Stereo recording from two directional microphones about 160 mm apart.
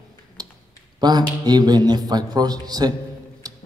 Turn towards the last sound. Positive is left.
turn(degrees=-20)  # may be behind; listen again after turning